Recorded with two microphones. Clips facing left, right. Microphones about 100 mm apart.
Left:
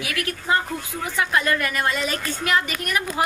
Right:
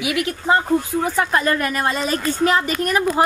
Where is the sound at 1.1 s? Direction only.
40° right (ahead or behind).